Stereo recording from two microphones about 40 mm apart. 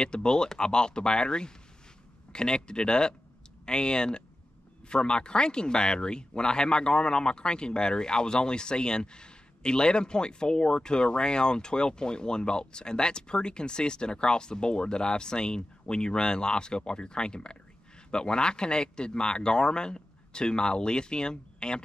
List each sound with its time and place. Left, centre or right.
0.0 s speech: left